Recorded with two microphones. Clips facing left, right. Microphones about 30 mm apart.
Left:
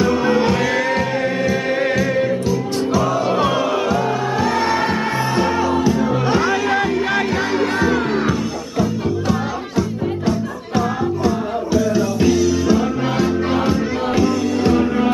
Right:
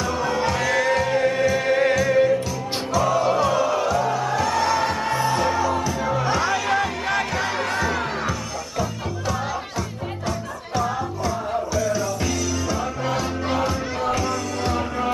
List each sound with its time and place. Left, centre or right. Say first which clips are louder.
0.0 s music: left 7 dB; left; by 3.3 s centre
3.3 s music: left 3 dB; left
14.2 s music: left 8 dB; centre